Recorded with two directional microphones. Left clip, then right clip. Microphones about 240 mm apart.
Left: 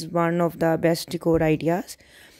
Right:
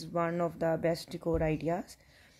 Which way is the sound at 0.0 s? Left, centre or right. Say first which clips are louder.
Left 9 dB; left.